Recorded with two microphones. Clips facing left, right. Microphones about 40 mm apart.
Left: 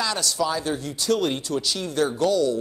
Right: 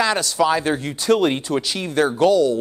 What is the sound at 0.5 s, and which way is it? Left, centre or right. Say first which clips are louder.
Speech: right 6 dB; right.